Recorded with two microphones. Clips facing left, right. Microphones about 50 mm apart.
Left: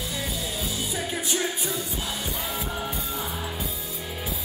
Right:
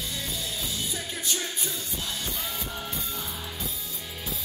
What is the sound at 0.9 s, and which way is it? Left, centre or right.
Music, centre.